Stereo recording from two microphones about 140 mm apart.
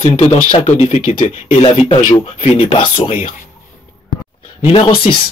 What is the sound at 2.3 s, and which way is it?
Speech, 45° left (ahead or behind).